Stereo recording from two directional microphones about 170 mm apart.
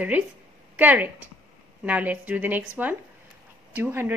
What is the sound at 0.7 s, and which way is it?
A woman's voice, 10° right (ahead or behind).